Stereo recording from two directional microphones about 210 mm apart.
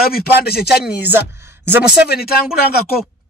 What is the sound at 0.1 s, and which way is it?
Speech, 50° left (ahead or behind).